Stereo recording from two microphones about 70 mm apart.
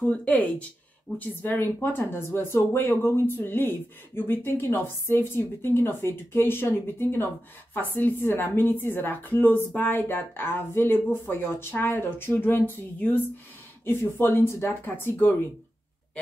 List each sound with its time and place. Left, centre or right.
0.1 s speech: left